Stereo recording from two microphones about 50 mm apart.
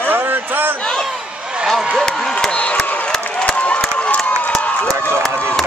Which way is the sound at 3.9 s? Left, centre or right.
Left.